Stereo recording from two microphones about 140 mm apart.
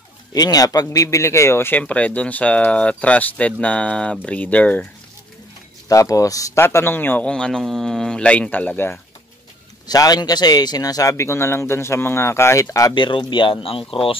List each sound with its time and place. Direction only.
0.3 s a man's voice: 25° left (ahead or behind); by 4.8 s 10° left (ahead or behind)
5.9 s a man's voice: 25° left (ahead or behind)
9.8 s a man's voice: 30° left (ahead or behind)